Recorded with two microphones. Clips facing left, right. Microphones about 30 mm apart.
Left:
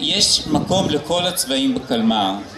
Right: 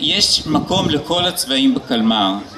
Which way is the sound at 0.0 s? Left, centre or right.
Centre.